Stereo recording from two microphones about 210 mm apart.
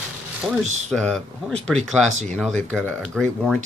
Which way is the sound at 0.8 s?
Centre (ahead or behind).